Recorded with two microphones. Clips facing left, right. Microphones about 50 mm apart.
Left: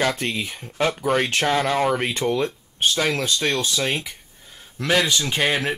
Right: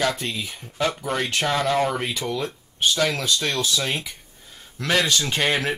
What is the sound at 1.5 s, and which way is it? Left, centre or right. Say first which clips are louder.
Speech: even; centre.